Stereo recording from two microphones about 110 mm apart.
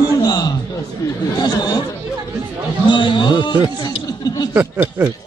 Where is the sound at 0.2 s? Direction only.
35° left (ahead or behind).